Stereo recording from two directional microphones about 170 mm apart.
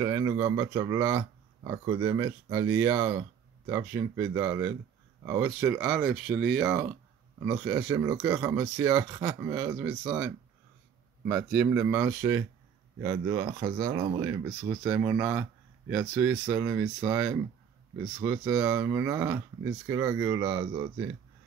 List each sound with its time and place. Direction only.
0.0 s speech: 20° right (ahead or behind)